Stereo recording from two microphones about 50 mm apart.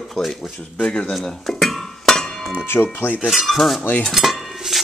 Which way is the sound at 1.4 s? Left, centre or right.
Centre.